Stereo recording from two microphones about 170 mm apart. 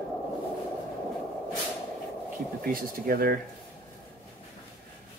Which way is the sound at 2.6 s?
60° right (ahead or behind).